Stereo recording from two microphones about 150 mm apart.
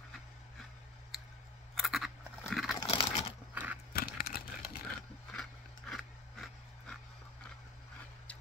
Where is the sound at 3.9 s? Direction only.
85° left.